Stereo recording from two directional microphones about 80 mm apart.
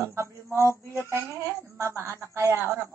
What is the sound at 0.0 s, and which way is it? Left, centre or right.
Speech, right.